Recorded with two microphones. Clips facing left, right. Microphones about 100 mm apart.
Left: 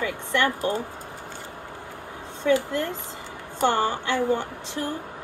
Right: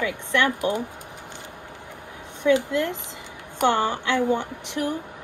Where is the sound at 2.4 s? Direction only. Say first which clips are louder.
Right 2 dB; 20° right (ahead or behind).